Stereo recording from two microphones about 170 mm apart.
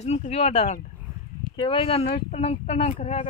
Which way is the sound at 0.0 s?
40° left (ahead or behind).